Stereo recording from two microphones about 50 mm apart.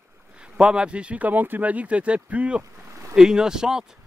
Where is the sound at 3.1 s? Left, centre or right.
Centre.